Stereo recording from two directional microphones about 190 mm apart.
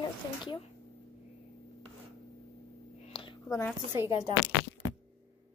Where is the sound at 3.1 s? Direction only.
25° left (ahead or behind).